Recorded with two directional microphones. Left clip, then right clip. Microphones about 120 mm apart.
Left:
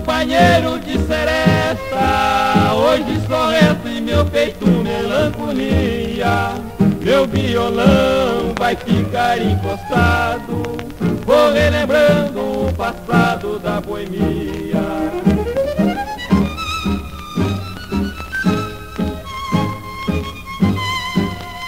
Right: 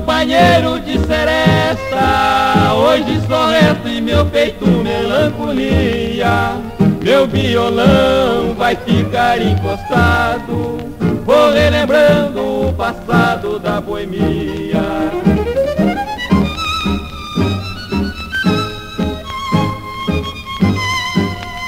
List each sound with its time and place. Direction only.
0.0 s music: 30° left (ahead or behind)